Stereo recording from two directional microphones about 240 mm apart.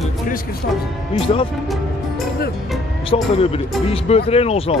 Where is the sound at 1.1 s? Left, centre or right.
Left.